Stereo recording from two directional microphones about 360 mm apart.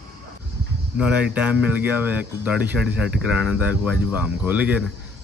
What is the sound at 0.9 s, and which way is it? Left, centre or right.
Speech, centre.